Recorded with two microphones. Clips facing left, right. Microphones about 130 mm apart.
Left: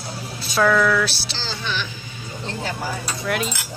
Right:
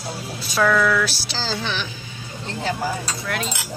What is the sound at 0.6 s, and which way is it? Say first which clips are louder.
Speech: left 1 dB; centre (ahead or behind).